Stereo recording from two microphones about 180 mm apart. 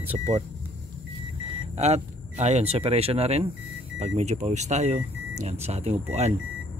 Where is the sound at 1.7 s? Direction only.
35° right (ahead or behind).